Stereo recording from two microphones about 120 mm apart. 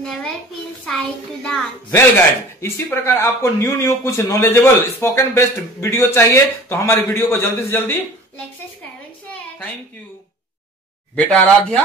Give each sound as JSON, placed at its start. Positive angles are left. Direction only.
{"t": 0.0, "sound": "a child's voice", "side_deg": 5}
{"t": 0.9, "sound": "child singing", "side_deg": 5}
{"t": 1.9, "sound": "a man's voice", "side_deg": 20}
{"t": 11.3, "sound": "speech", "side_deg": 10}